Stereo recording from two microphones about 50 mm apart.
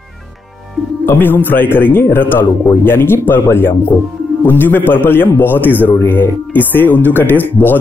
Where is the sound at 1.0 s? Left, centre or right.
Left.